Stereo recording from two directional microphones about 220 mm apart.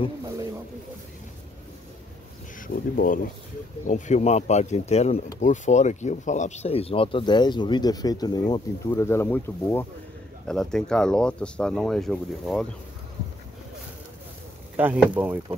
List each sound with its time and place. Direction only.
2.7 s speech: 40° left (ahead or behind); by 12.6 s centre (ahead or behind)
15.1 s speech: 10° right (ahead or behind)